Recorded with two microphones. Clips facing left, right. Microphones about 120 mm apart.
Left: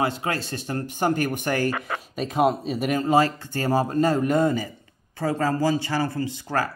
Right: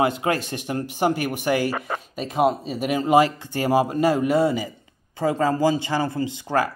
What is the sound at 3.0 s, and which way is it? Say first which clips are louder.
A man's voice: right 4 dB; 15° right (ahead or behind).